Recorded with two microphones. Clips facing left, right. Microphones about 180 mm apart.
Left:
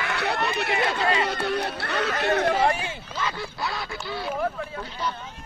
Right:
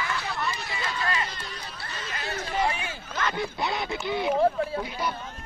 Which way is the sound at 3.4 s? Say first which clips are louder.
Right 2 dB; 20° right (ahead or behind).